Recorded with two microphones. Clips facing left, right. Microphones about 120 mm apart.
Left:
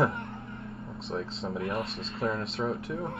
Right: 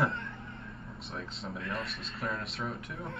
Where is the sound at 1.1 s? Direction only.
25° left (ahead or behind).